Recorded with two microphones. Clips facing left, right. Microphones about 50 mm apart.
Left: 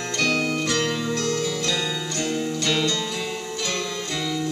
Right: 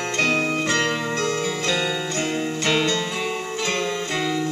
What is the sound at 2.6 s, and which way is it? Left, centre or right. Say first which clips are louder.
Music: right 3 dB; right.